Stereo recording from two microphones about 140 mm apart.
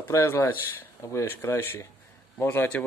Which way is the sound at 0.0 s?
20° left (ahead or behind).